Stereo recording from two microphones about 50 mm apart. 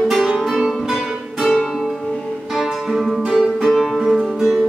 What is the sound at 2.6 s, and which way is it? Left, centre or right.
Music, centre.